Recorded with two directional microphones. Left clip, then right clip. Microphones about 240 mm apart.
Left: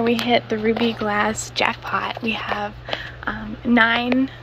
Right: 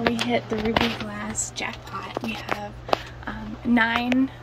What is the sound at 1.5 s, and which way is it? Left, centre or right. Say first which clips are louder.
A woman's voice: left 10 dB; centre.